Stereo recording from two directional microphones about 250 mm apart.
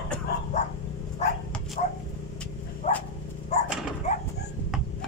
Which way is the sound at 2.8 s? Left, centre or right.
Left.